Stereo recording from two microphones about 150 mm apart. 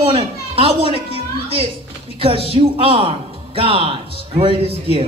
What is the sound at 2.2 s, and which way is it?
A man's voice, 40° right (ahead or behind).